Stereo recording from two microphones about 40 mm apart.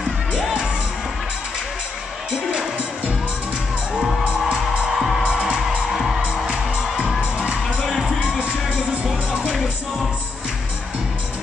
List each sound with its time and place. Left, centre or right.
3.9 s music: centre
4.2 s music: right
4.9 s music: centre
5.2 s music: right